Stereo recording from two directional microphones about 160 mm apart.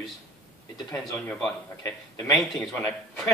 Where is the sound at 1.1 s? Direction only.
5° left (ahead or behind).